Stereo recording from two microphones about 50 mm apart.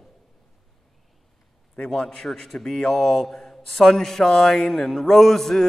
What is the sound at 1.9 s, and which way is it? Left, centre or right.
Speech, centre.